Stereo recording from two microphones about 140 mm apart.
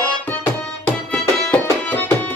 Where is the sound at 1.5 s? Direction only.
10° left (ahead or behind).